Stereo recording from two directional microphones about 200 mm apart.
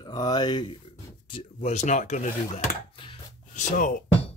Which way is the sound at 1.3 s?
35° left (ahead or behind).